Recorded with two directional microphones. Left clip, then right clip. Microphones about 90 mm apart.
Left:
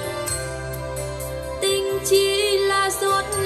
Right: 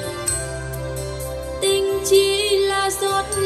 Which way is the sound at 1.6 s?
30° right (ahead or behind).